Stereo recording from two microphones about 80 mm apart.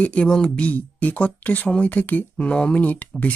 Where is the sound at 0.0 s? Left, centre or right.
Centre.